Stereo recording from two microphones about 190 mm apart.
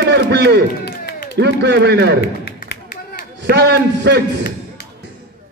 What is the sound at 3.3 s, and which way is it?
Speech, 65° right (ahead or behind).